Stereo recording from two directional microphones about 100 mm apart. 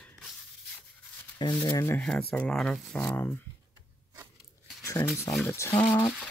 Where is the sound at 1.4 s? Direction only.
45° left (ahead or behind).